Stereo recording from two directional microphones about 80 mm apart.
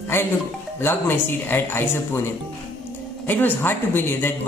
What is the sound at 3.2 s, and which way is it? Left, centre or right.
A woman's voice, left.